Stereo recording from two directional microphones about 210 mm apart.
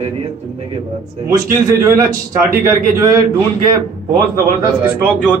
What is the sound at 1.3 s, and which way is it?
Speech, 15° right (ahead or behind).